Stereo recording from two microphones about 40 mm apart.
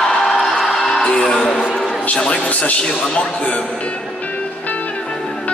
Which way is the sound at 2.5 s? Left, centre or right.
Left.